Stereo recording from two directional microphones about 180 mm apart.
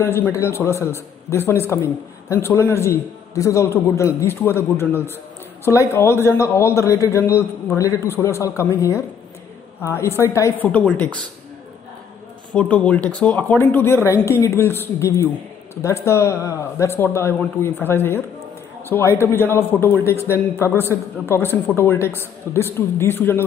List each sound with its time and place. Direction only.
0.0 s a man's voice: 15° left (ahead or behind)
12.5 s a man's voice: 10° left (ahead or behind)